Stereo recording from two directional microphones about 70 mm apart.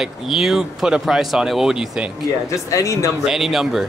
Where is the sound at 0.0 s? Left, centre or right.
Centre.